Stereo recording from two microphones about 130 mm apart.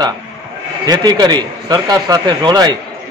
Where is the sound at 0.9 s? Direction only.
30° right (ahead or behind).